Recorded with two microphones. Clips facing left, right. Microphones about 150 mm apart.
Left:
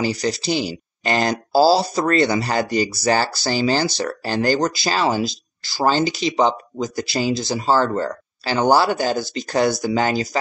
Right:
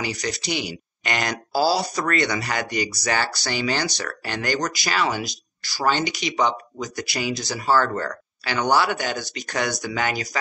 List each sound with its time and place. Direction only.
0.0 s speech: 30° left (ahead or behind)